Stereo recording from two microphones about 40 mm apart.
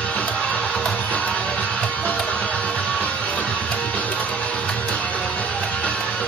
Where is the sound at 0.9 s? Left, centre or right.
Left.